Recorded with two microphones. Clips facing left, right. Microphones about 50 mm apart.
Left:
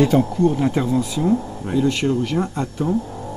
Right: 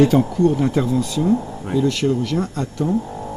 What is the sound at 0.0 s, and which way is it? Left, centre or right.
Speech, centre.